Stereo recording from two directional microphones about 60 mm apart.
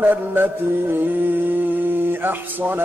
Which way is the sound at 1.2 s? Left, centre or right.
Right.